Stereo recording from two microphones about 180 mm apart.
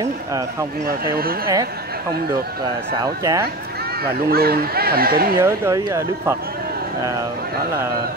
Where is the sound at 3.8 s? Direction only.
60° right (ahead or behind).